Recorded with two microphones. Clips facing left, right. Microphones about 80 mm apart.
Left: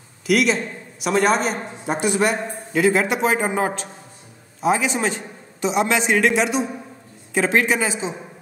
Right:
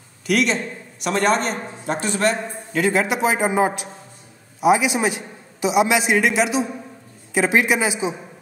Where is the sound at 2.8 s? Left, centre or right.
Centre.